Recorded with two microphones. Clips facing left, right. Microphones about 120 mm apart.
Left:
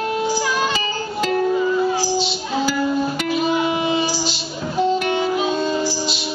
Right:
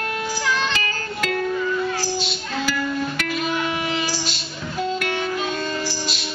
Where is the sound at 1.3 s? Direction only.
25° left (ahead or behind).